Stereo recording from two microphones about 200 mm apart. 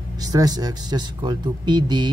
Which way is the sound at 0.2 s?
20° right (ahead or behind).